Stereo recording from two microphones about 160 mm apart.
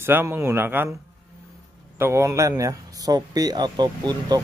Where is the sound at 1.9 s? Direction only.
15° right (ahead or behind).